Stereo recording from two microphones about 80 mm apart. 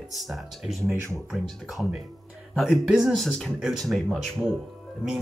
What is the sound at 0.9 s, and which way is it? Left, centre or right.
Speech, right.